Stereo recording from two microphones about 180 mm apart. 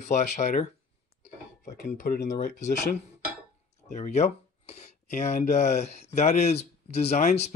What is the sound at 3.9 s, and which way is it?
Speech, 40° left (ahead or behind).